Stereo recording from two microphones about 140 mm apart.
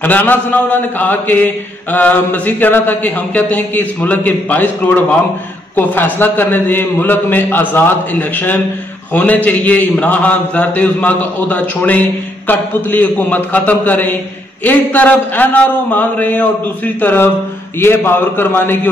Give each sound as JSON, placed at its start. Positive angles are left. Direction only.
{"t": 0.0, "sound": "a man's voice", "side_deg": 15}